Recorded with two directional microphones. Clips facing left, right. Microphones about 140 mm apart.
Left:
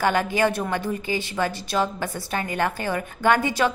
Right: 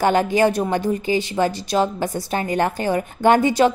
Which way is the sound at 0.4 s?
40° right (ahead or behind).